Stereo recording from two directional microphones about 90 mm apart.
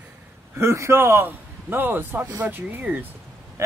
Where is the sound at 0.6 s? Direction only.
30° right (ahead or behind).